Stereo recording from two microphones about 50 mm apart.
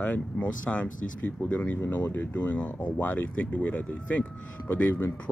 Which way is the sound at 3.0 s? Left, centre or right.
Left.